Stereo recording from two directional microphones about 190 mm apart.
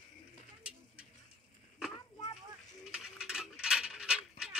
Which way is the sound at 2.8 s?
5° right (ahead or behind).